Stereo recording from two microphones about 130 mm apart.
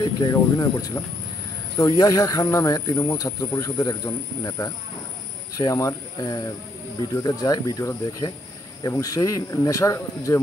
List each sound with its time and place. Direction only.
0.0 s speech: 30° left (ahead or behind)